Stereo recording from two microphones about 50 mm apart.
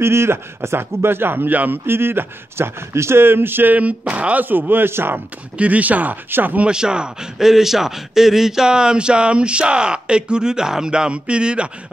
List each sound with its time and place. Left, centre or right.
0.0 s speech: right
3.7 s speech: right
4.5 s speech: right
5.6 s speech: right
6.6 s a man's voice: centre